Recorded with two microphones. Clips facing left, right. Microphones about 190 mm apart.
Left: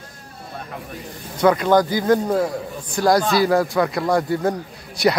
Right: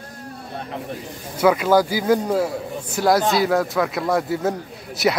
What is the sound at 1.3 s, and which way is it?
A man's voice, 5° right (ahead or behind).